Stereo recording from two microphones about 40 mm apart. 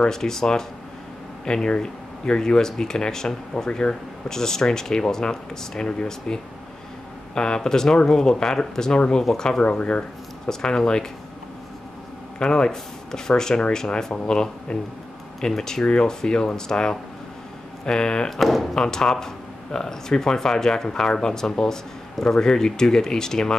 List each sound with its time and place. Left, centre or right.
0.1 s speech: centre
9.6 s speech: left
10.4 s speech: centre
12.4 s speech: left
18.3 s speech: centre
18.8 s speech: centre